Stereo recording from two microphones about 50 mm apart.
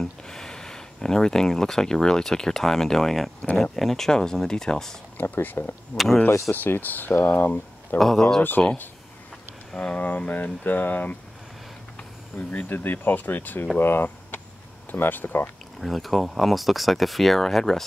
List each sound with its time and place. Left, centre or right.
0.0 s speech: centre
5.2 s speech: left
5.9 s speech: centre
6.5 s speech: left
8.0 s speech: centre
8.4 s speech: left
9.8 s speech: left
12.4 s speech: left
15.8 s speech: centre